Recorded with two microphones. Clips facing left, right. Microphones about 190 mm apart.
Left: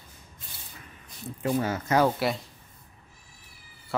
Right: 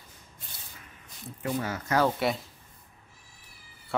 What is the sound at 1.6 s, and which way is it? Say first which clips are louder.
Speech: left 4 dB; 25° left (ahead or behind).